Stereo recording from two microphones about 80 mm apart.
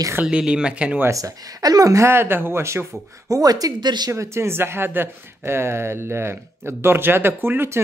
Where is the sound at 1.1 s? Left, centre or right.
Right.